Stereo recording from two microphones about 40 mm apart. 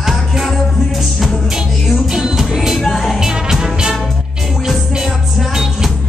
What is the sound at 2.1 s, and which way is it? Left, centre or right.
Music, centre.